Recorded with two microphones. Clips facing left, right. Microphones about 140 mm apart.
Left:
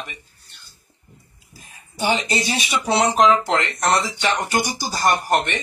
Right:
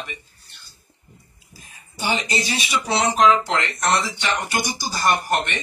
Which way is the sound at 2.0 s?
50° left (ahead or behind).